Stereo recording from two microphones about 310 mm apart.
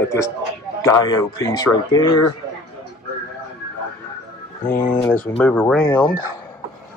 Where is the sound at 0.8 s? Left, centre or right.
Centre.